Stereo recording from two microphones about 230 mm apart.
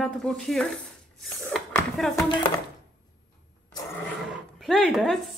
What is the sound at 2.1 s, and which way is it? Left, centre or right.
Speech, centre.